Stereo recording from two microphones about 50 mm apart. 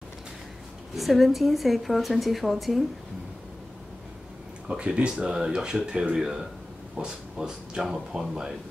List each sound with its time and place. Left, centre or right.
0.9 s a woman's voice: centre
4.6 s speech: centre